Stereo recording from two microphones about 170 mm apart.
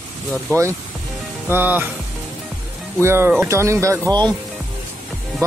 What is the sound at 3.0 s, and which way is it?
Speech, 15° right (ahead or behind).